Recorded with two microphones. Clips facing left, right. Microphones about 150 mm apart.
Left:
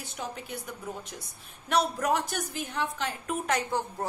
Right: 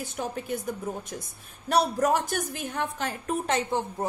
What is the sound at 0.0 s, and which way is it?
Speech, 50° right (ahead or behind).